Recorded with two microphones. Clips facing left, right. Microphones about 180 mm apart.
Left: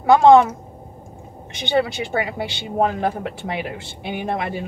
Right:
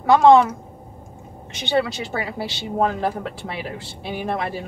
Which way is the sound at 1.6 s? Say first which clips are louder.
Left 1 dB; 15° left (ahead or behind).